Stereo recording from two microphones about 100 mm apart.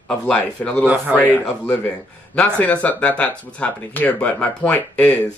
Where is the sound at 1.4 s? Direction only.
15° left (ahead or behind).